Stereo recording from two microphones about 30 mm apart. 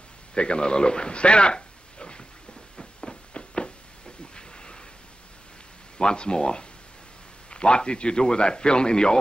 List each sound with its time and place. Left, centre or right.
0.3 s a man's voice: left
2.8 s a sound: left
5.9 s a man's voice: left